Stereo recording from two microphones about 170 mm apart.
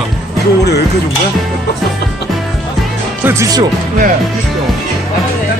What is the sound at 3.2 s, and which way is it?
Speech, 15° right (ahead or behind).